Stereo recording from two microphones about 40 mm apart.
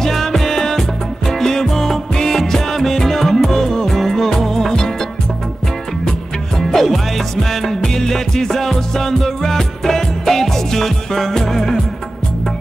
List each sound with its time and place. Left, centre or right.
0.0 s music: centre
6.6 s music: centre